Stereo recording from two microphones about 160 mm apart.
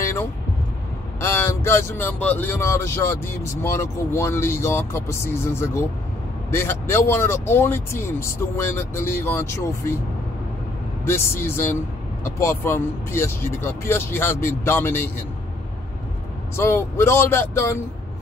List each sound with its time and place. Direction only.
0.0 s vehicle: 15° left (ahead or behind)
1.2 s speech: 15° left (ahead or behind)
11.1 s speech: 15° left (ahead or behind)
16.5 s speech: 15° left (ahead or behind)